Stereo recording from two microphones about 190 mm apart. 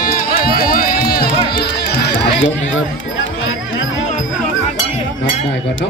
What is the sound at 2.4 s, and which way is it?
Speech, 80° left.